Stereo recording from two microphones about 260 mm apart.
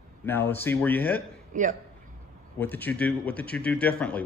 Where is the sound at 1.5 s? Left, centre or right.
Right.